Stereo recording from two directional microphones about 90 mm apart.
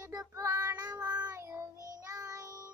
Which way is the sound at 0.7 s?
50° right (ahead or behind).